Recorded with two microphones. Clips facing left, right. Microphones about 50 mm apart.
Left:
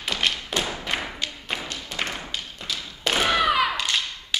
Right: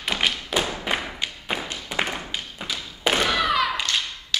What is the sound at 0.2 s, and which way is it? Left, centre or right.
Thump, centre.